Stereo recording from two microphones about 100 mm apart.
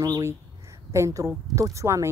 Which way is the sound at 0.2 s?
30° right (ahead or behind).